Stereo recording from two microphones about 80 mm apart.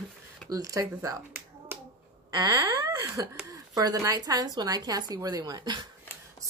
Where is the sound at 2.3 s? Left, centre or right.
Right.